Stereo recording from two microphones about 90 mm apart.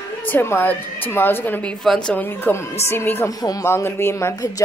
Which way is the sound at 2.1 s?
25° left (ahead or behind).